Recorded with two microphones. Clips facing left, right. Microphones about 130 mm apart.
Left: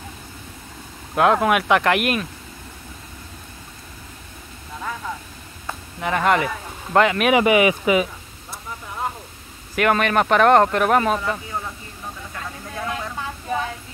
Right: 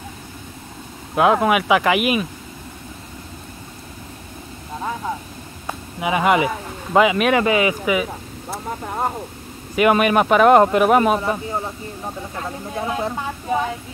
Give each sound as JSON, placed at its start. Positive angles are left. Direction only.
{"t": 1.1, "sound": "speech", "side_deg": -5}
{"t": 5.9, "sound": "speech", "side_deg": -10}
{"t": 7.3, "sound": "speech", "side_deg": 20}
{"t": 8.5, "sound": "vehicle", "side_deg": -55}
{"t": 9.8, "sound": "speech", "side_deg": -10}
{"t": 11.1, "sound": "speech", "side_deg": -25}